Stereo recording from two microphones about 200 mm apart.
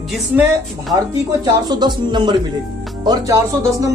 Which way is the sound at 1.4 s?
20° right (ahead or behind).